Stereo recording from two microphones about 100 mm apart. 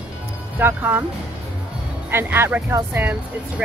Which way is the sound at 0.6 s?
20° right (ahead or behind).